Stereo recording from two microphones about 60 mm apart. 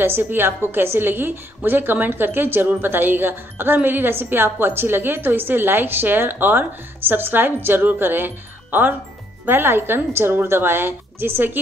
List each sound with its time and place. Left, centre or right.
0.0 s a woman's voice: right
9.5 s a woman's voice: right